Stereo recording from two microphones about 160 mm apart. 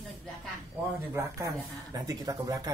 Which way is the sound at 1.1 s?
20° right (ahead or behind).